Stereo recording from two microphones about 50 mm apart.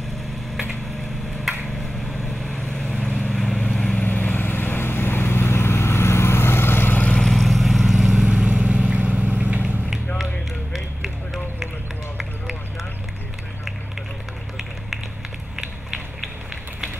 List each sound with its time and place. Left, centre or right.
2.5 s vehicle: left
4.0 s vehicle: left
7.2 s vehicle: centre
8.6 s vehicle: right
10.1 s a sound: centre